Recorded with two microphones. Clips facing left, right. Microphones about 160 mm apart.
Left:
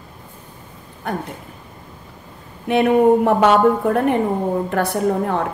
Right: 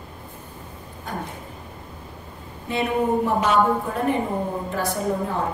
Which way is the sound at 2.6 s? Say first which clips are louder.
Left 9 dB; 65° left (ahead or behind).